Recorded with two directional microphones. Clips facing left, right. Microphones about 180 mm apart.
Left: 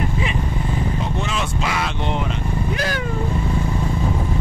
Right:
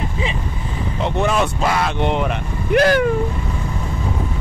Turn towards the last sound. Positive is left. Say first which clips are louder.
# right 10 dB
turn(degrees=-65)  # may be behind; listen again after turning